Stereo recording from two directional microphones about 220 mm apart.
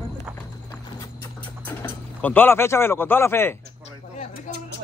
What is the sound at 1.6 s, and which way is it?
Speech, 10° left (ahead or behind).